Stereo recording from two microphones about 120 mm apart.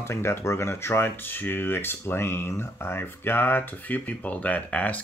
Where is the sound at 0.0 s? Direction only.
20° left (ahead or behind).